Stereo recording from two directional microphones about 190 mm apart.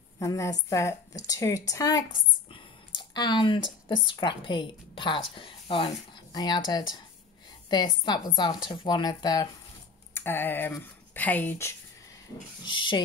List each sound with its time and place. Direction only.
0.2 s a woman's voice: 15° left (ahead or behind)
12.6 s a woman's voice: 25° left (ahead or behind)